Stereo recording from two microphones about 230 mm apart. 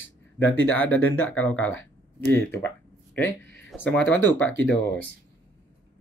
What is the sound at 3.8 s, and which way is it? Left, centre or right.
Speech, centre.